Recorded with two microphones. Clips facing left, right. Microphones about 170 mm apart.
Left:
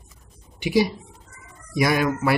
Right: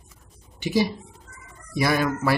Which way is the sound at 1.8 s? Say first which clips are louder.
Left 2 dB; 15° left (ahead or behind).